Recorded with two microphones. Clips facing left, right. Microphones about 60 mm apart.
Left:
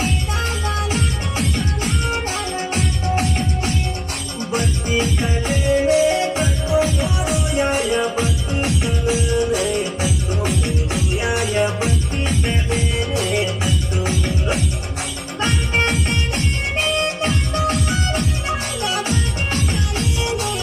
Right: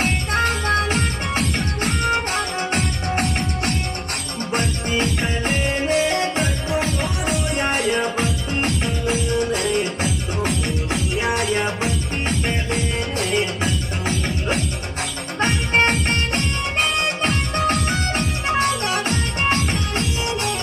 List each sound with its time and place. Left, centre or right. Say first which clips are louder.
0.0 s music: right 3 dB; right
3.2 s music: right 1 dB; right
11.4 s music: left 2 dB; right
15.4 s music: right 2 dB; right